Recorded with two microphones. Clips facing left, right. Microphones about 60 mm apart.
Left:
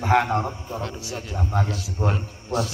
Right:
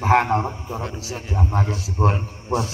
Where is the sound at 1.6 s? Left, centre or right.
Right.